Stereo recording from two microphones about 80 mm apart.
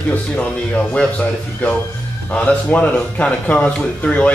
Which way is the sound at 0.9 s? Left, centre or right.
Centre.